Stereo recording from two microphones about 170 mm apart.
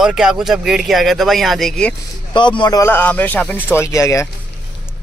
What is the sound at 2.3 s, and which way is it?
A man's voice, 25° left (ahead or behind).